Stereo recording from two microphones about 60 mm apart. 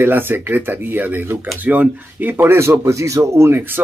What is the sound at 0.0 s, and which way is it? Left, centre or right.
Speech, right.